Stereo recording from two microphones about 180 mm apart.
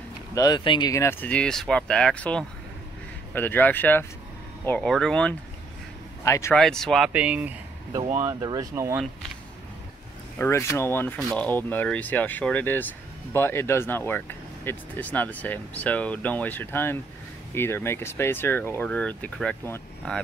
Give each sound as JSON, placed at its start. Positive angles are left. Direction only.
{"t": 0.3, "sound": "speech", "side_deg": 20}
{"t": 6.2, "sound": "speech", "side_deg": 15}
{"t": 6.5, "sound": "speech", "side_deg": 5}
{"t": 8.2, "sound": "speech", "side_deg": -20}
{"t": 10.4, "sound": "speech", "side_deg": 15}